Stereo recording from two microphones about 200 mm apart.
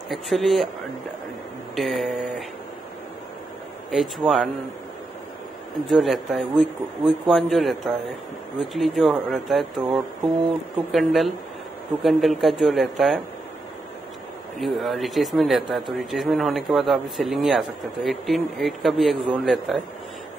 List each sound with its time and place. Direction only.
0.1 s speech: centre (ahead or behind)
1.8 s speech: centre (ahead or behind)
3.9 s speech: centre (ahead or behind)
5.9 s speech: centre (ahead or behind)
14.6 s speech: centre (ahead or behind)